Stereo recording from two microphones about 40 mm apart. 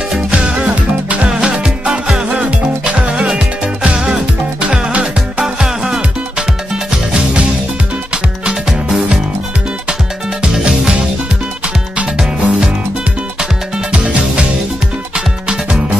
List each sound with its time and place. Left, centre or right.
0.3 s music: right
1.3 s music: right
2.2 s music: right
8.6 s music: centre
10.4 s music: right
12.2 s music: centre
13.9 s music: right
15.1 s music: centre